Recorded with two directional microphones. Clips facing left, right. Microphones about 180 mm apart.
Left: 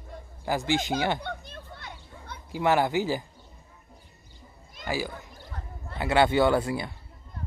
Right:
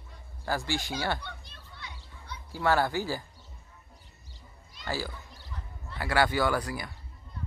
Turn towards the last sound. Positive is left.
turn(degrees=25)  # may be behind; listen again after turning